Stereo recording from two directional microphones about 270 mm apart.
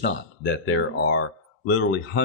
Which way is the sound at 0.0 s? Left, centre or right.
Left.